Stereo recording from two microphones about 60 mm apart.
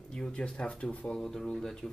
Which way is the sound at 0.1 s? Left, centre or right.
Centre.